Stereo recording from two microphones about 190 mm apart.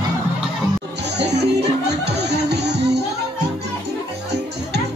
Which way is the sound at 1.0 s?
60° right (ahead or behind).